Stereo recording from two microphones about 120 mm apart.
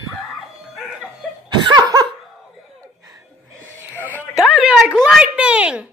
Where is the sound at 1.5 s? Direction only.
40° right (ahead or behind).